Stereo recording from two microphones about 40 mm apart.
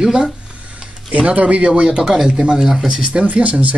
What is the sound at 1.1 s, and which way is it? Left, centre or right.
Speech, right.